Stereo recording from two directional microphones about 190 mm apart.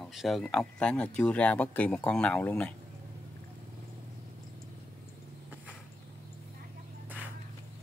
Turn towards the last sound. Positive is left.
turn(degrees=-10)  # may be behind; listen again after turning